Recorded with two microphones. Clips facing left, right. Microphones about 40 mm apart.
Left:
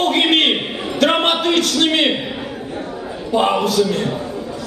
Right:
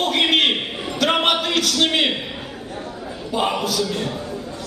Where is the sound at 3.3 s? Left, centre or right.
Centre.